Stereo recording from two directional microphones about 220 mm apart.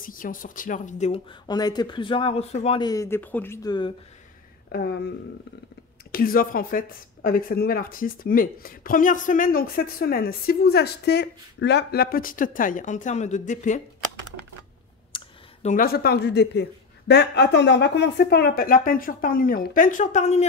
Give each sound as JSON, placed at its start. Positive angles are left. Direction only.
{"t": 0.0, "sound": "speech", "side_deg": 40}
{"t": 1.5, "sound": "speech", "side_deg": 20}
{"t": 4.7, "sound": "speech", "side_deg": 50}
{"t": 6.1, "sound": "speech", "side_deg": 40}
{"t": 15.1, "sound": "speech", "side_deg": 35}